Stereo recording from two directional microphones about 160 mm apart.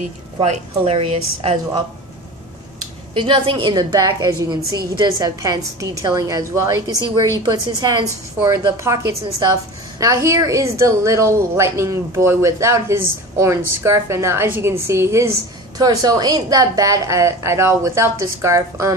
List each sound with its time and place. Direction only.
0.4 s a woman's voice: 40° right (ahead or behind)
3.2 s a woman's voice: 30° right (ahead or behind)